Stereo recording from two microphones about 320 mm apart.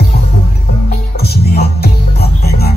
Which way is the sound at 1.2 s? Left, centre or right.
Left.